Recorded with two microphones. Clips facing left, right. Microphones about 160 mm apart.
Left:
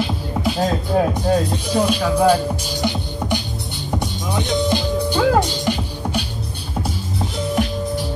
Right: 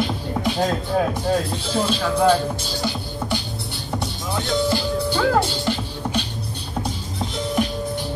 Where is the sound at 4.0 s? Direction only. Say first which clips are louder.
Left 3 dB; 20° left (ahead or behind).